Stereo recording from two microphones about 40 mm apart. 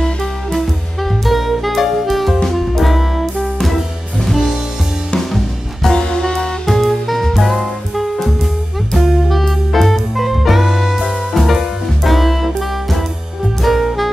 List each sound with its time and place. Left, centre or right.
0.0 s music: centre
5.3 s music: centre
5.9 s music: centre
6.6 s music: centre